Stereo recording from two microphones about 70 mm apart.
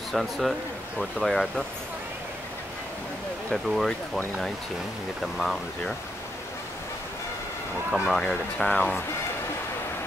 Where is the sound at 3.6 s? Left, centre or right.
Centre.